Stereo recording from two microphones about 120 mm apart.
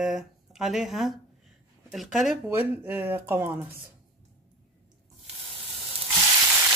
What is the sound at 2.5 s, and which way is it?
Speech, 20° right (ahead or behind).